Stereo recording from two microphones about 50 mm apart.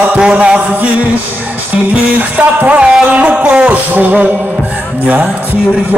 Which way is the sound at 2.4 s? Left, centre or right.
Right.